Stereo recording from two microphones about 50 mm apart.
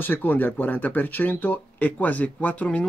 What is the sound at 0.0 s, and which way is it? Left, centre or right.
Speech, left.